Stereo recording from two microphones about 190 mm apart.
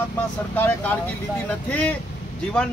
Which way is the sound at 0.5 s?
10° left (ahead or behind).